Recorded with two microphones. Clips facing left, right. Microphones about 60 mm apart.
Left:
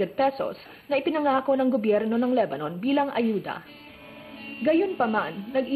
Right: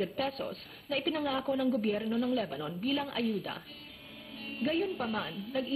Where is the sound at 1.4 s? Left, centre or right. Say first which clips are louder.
Left 8 dB; left.